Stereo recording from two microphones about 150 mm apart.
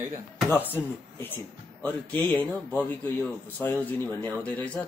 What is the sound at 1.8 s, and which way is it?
A man's voice, 10° left (ahead or behind).